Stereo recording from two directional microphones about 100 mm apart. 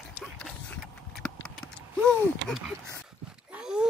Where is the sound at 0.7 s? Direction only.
10° left (ahead or behind).